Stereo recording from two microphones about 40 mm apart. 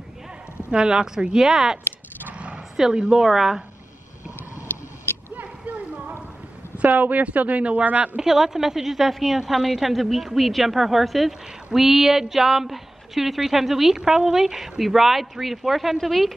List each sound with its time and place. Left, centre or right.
0.7 s a woman's voice: right
2.3 s roar: right
2.8 s a woman's voice: right
5.3 s a sound: right
6.9 s speech: right
8.2 s a woman's voice: centre